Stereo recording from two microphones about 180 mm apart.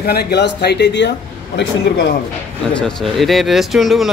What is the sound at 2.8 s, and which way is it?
Speech, 5° left (ahead or behind).